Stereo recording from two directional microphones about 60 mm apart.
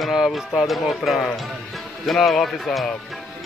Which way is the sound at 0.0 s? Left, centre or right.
Centre.